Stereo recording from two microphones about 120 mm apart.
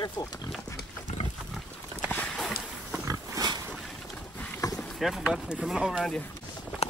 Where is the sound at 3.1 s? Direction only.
35° right (ahead or behind).